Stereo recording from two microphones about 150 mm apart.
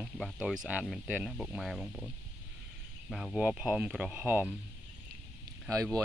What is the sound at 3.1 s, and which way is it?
Speech, centre (ahead or behind).